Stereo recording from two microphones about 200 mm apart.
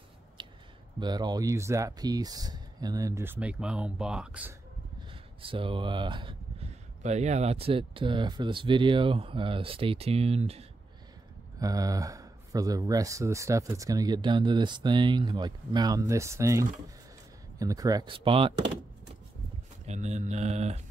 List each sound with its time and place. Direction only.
0.4 s a sound: 25° right (ahead or behind)
0.9 s speech: 20° right (ahead or behind)
5.1 s speech: 25° right (ahead or behind)
7.0 s speech: 35° right (ahead or behind)
11.6 s speech: 20° right (ahead or behind)
19.9 s speech: 35° right (ahead or behind)